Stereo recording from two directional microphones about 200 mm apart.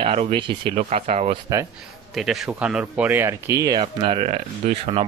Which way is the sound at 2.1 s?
Centre (ahead or behind).